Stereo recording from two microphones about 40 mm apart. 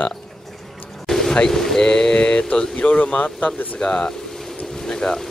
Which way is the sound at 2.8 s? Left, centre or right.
Left.